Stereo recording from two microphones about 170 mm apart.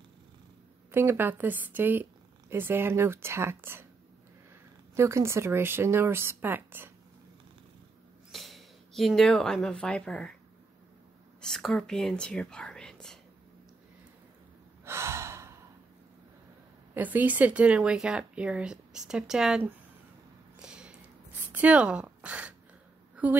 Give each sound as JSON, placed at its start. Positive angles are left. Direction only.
{"t": 0.9, "sound": "speech", "side_deg": -15}
{"t": 4.9, "sound": "speech", "side_deg": -15}
{"t": 8.3, "sound": "speech", "side_deg": 0}
{"t": 11.4, "sound": "speech", "side_deg": 0}
{"t": 14.9, "sound": "gasp", "side_deg": -15}
{"t": 16.9, "sound": "speech", "side_deg": -10}
{"t": 20.5, "sound": "a sound", "side_deg": -5}
{"t": 21.5, "sound": "speech", "side_deg": -10}